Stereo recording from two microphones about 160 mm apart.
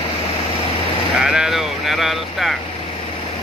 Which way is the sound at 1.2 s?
5° right (ahead or behind).